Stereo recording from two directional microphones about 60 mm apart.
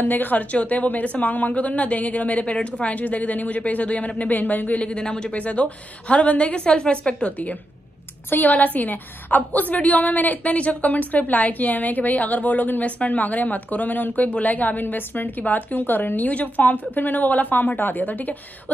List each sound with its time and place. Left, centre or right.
0.0 s a woman's voice: left